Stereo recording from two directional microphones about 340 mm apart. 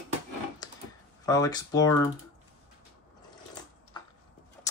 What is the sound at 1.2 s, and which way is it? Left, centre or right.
Speech, centre.